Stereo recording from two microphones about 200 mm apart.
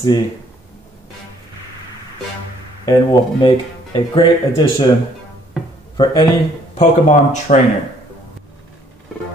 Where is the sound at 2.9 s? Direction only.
20° left (ahead or behind).